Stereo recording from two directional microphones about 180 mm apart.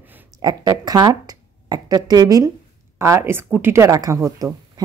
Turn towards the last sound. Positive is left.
turn(degrees=-20)  # may be behind; listen again after turning